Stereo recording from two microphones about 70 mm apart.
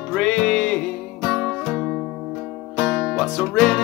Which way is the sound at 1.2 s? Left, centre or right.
Centre.